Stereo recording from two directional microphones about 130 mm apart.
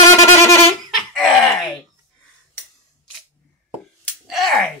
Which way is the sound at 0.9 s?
Centre (ahead or behind).